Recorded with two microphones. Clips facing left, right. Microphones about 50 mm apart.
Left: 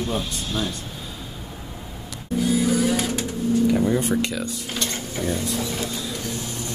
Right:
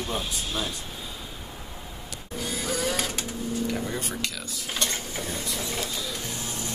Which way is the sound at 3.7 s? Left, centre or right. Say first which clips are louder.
Left 10 dB; centre.